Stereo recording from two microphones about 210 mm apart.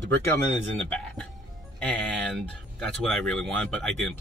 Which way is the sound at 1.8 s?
5° left (ahead or behind).